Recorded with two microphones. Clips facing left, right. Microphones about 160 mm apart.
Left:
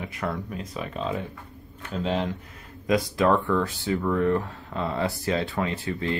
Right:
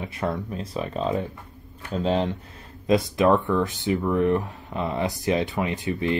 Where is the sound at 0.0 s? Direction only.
25° right (ahead or behind).